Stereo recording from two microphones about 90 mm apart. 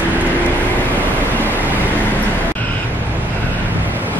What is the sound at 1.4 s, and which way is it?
Vehicle, 20° right (ahead or behind).